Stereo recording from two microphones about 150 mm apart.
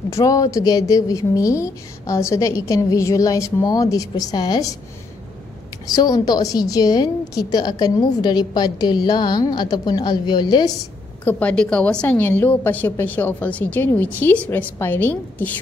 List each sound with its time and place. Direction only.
0.1 s a woman's voice: 25° left (ahead or behind)
5.9 s a woman's voice: 25° left (ahead or behind)
11.2 s a woman's voice: 10° left (ahead or behind)